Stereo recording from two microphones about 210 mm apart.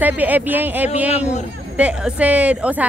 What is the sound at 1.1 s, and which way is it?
Speech, 30° left (ahead or behind).